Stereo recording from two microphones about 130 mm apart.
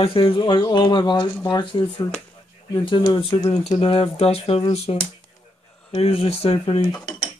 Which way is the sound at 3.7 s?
45° left (ahead or behind).